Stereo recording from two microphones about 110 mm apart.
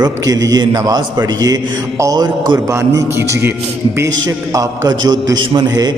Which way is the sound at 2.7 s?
25° right (ahead or behind).